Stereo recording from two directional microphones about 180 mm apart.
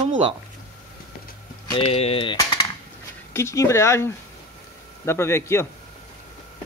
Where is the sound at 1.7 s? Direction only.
30° left (ahead or behind).